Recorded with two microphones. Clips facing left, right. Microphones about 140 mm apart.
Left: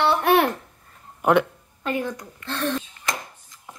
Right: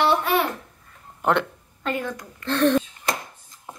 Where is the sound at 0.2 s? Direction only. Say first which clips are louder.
Left 4 dB; 70° left (ahead or behind).